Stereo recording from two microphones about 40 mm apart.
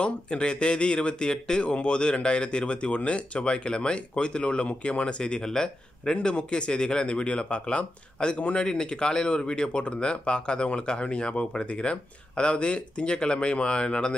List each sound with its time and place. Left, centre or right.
0.0 s speech: left